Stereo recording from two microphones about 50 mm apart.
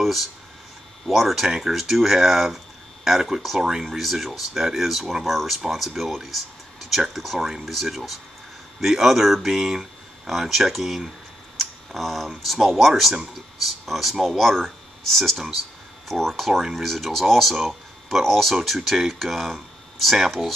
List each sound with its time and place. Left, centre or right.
0.0 s speech: centre
11.5 s clicking: centre
12.5 s speech: centre